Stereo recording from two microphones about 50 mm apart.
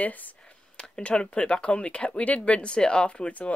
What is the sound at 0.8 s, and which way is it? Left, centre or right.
Speech, left.